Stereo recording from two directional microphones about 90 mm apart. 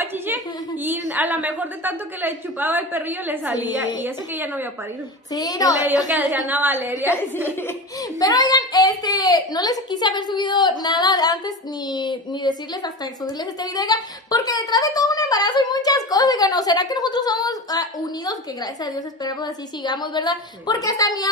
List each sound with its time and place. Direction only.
0.8 s a woman's voice: 20° right (ahead or behind)
5.3 s a woman's voice: 45° left (ahead or behind)
6.4 s a woman's voice: 20° right (ahead or behind)
8.2 s a woman's voice: 45° left (ahead or behind)